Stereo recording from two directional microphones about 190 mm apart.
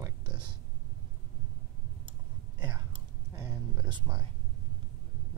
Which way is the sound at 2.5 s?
20° right (ahead or behind).